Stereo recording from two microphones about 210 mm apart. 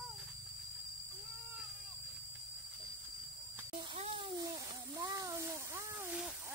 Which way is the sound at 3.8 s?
25° right (ahead or behind).